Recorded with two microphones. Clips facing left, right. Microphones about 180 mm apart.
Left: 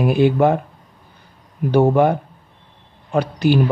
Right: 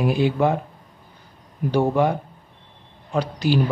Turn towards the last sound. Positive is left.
turn(degrees=55)  # may be behind; listen again after turning